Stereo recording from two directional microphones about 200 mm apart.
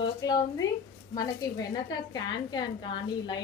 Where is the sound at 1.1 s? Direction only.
20° left (ahead or behind).